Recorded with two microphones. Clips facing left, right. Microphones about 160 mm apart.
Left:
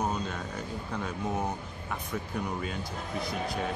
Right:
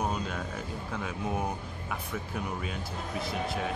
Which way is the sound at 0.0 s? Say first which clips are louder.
Left 1 dB; 10° right (ahead or behind).